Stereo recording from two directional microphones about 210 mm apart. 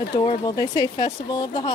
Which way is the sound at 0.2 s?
25° left (ahead or behind).